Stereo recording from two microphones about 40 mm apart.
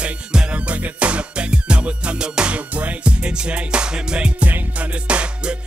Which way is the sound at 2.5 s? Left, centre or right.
Right.